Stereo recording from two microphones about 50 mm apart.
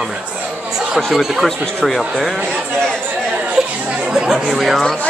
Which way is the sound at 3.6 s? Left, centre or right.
Centre.